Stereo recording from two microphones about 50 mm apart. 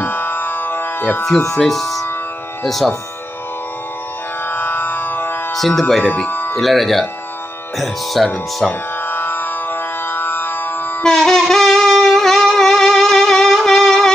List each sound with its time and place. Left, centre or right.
0.0 s music: left
1.5 s speech: centre
4.5 s music: left
5.5 s speech: centre
6.2 s music: left
6.5 s speech: centre
9.0 s music: left
11.1 s wind instrument: centre